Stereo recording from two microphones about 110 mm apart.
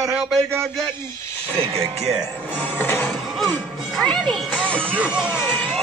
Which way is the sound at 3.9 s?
5° left (ahead or behind).